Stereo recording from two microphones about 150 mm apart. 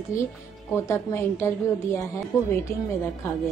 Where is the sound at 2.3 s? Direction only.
5° right (ahead or behind).